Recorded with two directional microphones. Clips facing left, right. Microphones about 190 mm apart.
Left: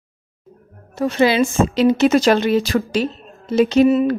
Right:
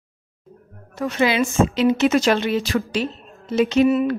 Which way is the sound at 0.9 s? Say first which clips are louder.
Left 4 dB; 30° left (ahead or behind).